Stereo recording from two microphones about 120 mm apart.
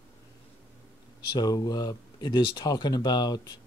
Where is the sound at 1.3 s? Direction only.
35° left (ahead or behind).